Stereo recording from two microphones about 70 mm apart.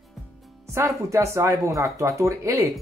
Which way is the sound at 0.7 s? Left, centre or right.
Right.